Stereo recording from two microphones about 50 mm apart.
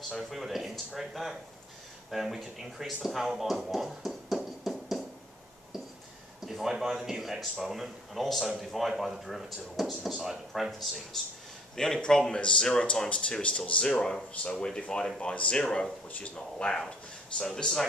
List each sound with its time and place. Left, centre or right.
0.3 s speech: centre
4.6 s music: centre
6.4 s speech: centre
11.7 s a man's voice: centre
13.9 s a man's voice: centre